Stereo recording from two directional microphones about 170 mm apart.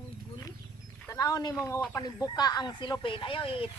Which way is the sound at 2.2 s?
25° left (ahead or behind).